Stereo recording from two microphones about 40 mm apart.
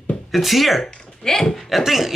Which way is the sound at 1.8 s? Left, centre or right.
Centre.